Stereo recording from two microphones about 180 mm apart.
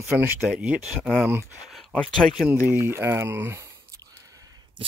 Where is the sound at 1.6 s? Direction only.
Centre (ahead or behind).